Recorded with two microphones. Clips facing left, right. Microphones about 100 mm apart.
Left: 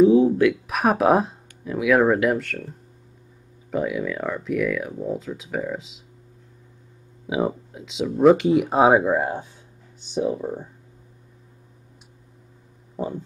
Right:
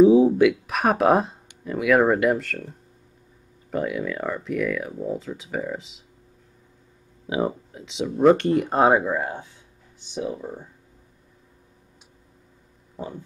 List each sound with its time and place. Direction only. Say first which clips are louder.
0.0 s a sound: right 1 dB; 20° right (ahead or behind)
0.3 s speech: right 1 dB; 5° right (ahead or behind)
3.7 s speech: left 1 dB; centre (ahead or behind)
7.2 s speech: left 1 dB; 5° left (ahead or behind)
8.9 s speech: left 3 dB; 20° left (ahead or behind)